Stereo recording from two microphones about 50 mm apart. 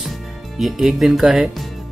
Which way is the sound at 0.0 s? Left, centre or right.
Centre.